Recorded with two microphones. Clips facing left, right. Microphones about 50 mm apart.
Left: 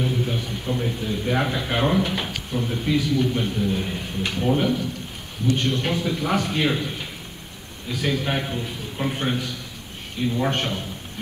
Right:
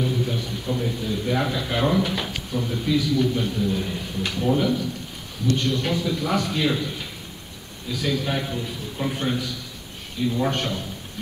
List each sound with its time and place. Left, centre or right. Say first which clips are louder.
0.0 s a man's voice: even; left